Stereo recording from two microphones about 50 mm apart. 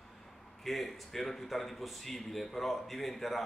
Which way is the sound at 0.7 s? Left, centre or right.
Centre.